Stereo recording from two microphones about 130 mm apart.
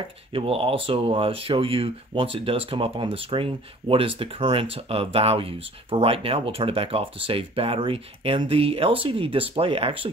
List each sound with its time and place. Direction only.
0.3 s speech: 45° right (ahead or behind)